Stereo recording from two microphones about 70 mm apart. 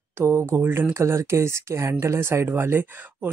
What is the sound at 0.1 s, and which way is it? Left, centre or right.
Speech, right.